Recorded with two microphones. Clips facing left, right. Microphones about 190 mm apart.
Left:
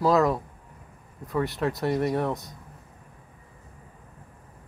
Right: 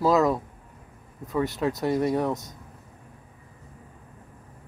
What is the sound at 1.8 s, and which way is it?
Speech, centre (ahead or behind).